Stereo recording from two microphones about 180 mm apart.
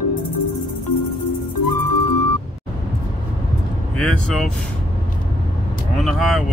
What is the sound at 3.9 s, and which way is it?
Speech, centre (ahead or behind).